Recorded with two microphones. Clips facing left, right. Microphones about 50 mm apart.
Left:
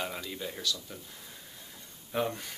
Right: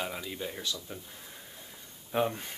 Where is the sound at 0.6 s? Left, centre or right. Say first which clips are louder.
Left 1 dB; right.